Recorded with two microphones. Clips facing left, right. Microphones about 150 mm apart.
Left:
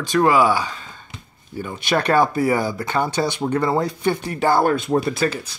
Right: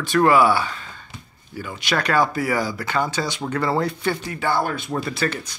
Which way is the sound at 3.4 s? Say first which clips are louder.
Even; 15° left (ahead or behind).